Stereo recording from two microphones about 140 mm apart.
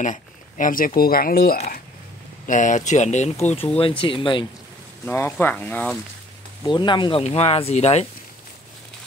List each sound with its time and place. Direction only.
0.0 s speech: 65° left (ahead or behind); by 1.6 s 90° left
2.4 s speech: 65° left (ahead or behind); by 4.5 s 35° left (ahead or behind)
5.0 s speech: 15° left (ahead or behind)
6.6 s speech: 35° left (ahead or behind); by 8.1 s 50° left (ahead or behind)